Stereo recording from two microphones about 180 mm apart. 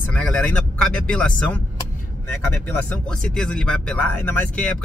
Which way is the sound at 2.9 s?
5° left (ahead or behind).